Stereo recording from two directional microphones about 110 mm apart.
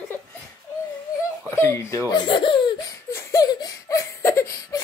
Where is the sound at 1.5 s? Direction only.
25° left (ahead or behind).